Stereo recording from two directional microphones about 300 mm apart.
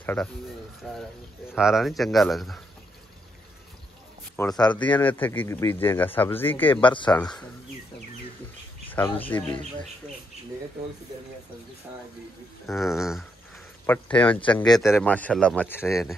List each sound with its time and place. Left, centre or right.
0.0 s speech: centre
4.4 s speech: centre
7.1 s speech: centre
8.8 s bird: centre
9.2 s speech: centre
12.6 s speech: centre